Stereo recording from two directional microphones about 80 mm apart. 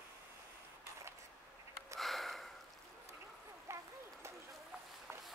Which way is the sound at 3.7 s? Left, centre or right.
Right.